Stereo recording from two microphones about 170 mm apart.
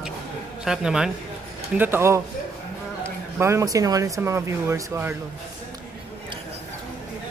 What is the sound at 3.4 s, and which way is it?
Speech, 15° right (ahead or behind).